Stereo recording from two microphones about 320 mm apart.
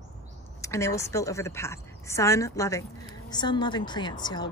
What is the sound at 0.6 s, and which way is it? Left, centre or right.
A woman's voice, centre.